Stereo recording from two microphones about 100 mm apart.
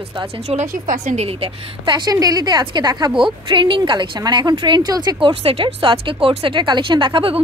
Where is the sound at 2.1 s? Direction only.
40° right (ahead or behind).